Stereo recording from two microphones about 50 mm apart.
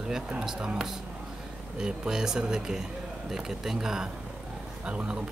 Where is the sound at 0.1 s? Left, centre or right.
Centre.